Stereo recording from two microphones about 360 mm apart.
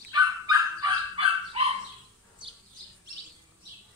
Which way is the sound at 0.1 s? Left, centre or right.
Centre.